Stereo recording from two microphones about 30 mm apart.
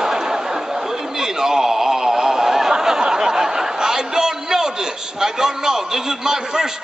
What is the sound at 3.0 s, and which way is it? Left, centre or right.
A man's voice, right.